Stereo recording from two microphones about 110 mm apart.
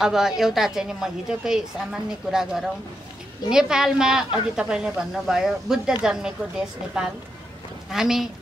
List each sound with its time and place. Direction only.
0.0 s a woman's voice: 5° right (ahead or behind)
7.9 s a woman's voice: 5° right (ahead or behind)